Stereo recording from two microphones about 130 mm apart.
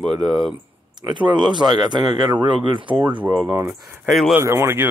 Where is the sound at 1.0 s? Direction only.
35° right (ahead or behind).